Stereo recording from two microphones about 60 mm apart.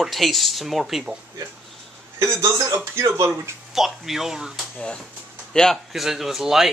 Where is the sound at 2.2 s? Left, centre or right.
Right.